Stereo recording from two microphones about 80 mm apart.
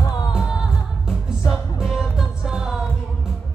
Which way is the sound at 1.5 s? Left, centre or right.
Centre.